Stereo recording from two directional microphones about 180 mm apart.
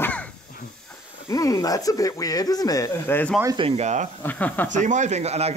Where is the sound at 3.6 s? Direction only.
35° right (ahead or behind).